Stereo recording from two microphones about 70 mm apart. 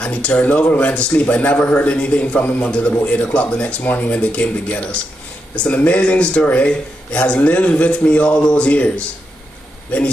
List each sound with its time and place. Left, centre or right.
0.0 s a man's voice: centre
2.0 s a man's voice: centre